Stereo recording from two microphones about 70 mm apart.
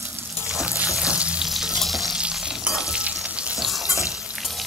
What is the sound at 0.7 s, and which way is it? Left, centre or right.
Water, centre.